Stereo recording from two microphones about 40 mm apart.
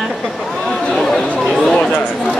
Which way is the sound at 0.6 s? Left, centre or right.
Left.